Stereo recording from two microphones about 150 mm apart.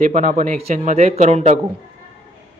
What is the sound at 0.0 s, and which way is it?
Speech, 55° right (ahead or behind).